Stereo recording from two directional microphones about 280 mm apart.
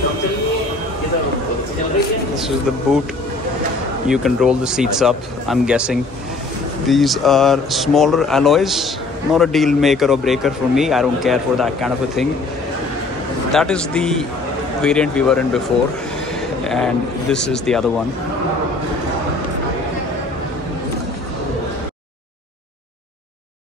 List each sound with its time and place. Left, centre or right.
2.3 s a man's voice: centre
4.1 s a man's voice: centre
13.5 s a man's voice: centre
16.6 s a man's voice: centre